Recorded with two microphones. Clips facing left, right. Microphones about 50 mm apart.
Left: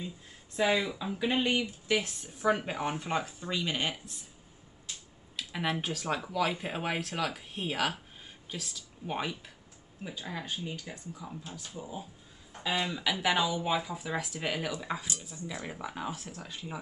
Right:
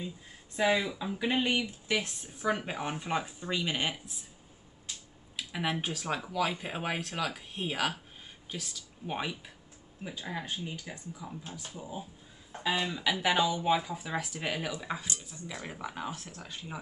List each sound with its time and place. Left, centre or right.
0.6 s speech: centre
5.3 s speech: centre
12.6 s speech: centre